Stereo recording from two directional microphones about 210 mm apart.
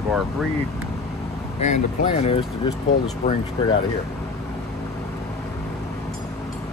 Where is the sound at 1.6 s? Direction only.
35° left (ahead or behind).